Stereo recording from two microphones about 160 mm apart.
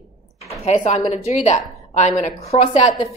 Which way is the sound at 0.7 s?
45° left (ahead or behind).